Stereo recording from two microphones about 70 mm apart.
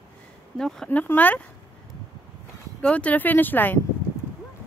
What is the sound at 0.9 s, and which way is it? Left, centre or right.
Speech, left.